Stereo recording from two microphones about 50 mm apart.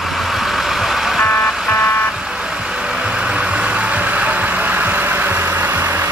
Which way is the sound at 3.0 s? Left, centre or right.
Right.